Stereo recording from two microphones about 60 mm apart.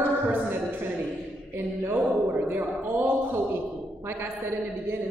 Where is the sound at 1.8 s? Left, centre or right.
Right.